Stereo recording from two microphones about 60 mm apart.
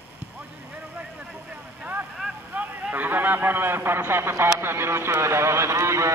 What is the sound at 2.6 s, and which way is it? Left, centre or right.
A man's voice, right.